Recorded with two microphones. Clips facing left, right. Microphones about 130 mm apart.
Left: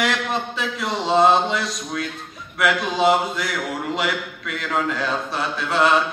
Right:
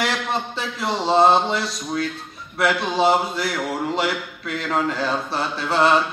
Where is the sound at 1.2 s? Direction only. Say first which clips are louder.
Even; centre (ahead or behind).